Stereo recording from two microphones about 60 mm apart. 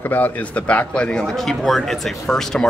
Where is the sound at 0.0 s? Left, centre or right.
Left.